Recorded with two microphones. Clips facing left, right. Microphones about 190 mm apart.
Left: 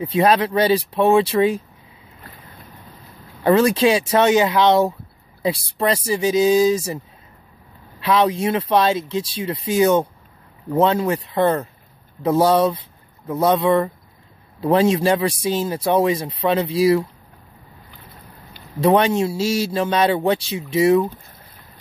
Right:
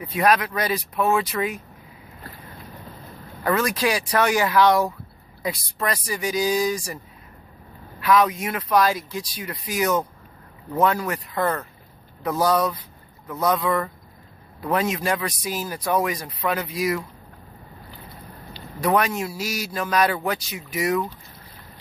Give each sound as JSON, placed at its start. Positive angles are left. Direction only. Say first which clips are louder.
{"t": 0.0, "sound": "speech", "louder": "left 4 dB", "side_deg": 25}
{"t": 3.4, "sound": "speech", "louder": "left 7 dB", "side_deg": 25}
{"t": 8.0, "sound": "speech", "louder": "left 2 dB", "side_deg": 25}
{"t": 18.8, "sound": "speech", "louder": "left 6 dB", "side_deg": 25}